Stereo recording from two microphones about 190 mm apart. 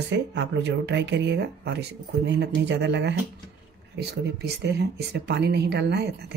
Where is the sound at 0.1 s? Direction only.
70° right (ahead or behind).